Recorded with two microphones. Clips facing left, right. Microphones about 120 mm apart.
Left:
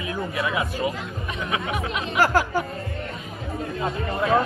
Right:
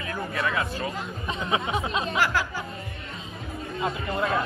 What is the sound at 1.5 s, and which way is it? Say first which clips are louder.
Speech: right 1 dB; 25° right (ahead or behind).